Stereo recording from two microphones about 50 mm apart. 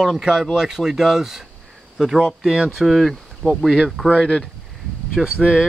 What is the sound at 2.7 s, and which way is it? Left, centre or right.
Speech, centre.